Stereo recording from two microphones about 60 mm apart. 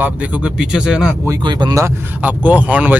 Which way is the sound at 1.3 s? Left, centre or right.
Right.